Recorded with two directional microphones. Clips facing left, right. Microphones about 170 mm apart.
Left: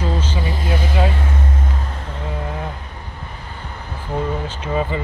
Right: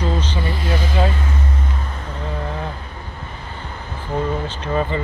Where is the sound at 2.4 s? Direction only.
5° left (ahead or behind).